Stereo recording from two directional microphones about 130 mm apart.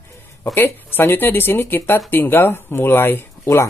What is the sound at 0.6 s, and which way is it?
Speech, 15° left (ahead or behind).